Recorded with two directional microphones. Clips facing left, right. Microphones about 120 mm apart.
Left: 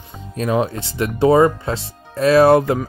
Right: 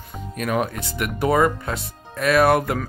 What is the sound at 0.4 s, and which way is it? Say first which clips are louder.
Speech: left 4 dB; 25° left (ahead or behind).